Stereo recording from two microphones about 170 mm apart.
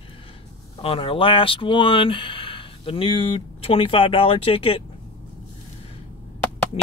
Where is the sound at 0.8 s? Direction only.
30° left (ahead or behind).